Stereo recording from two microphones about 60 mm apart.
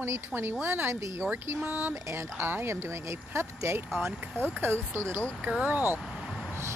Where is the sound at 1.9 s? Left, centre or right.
Right.